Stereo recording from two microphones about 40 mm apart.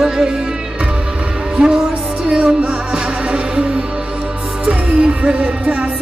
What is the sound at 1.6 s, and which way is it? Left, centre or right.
Music, centre.